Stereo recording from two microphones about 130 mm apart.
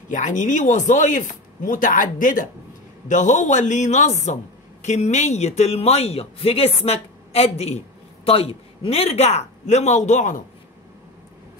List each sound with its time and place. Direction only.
0.1 s speech: 75° left (ahead or behind)
3.1 s a man's voice: 70° left (ahead or behind)